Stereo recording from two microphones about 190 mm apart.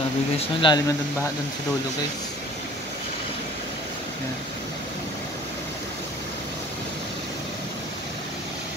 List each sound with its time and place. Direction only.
0.6 s speech: 25° left (ahead or behind)